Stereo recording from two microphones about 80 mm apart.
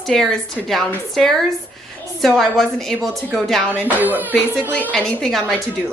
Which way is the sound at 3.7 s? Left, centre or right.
Right.